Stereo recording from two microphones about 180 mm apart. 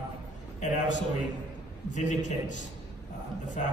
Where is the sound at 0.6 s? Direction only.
45° left (ahead or behind).